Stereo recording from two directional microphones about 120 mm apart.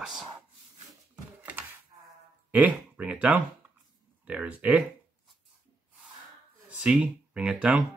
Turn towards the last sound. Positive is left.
turn(degrees=-10)  # may be behind; listen again after turning